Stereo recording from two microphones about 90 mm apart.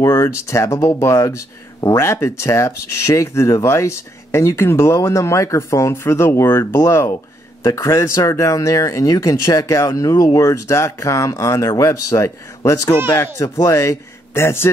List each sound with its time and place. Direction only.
0.0 s a man's voice: 35° left (ahead or behind)